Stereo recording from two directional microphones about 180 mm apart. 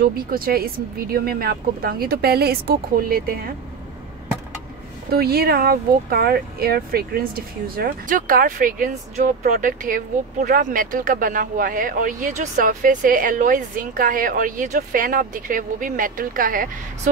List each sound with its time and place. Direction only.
0.0 s speech: 55° right (ahead or behind)
5.1 s speech: 60° right (ahead or behind)